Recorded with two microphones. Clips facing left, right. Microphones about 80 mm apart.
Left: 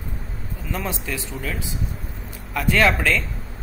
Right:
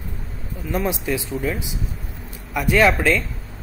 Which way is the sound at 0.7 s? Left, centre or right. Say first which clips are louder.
Right 6 dB; centre.